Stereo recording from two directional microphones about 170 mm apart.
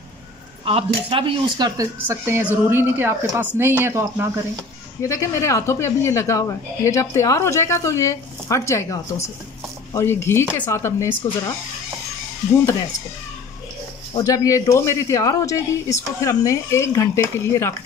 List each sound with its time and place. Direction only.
0.7 s speech: 35° right (ahead or behind)
1.8 s speech: 15° right (ahead or behind)
5.0 s speech: 20° left (ahead or behind)
14.1 s speech: 20° left (ahead or behind)